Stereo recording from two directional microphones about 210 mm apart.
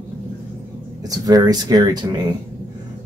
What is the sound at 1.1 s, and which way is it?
Speech, 15° right (ahead or behind).